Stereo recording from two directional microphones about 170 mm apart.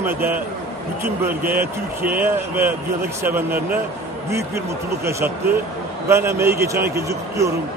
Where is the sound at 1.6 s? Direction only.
10° right (ahead or behind).